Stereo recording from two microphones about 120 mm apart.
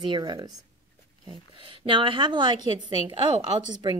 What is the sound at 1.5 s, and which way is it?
Speech, 45° right (ahead or behind).